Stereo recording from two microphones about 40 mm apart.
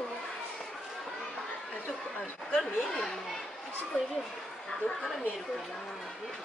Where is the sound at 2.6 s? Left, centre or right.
Centre.